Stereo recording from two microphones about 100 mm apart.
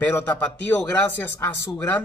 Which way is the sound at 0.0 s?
15° left (ahead or behind).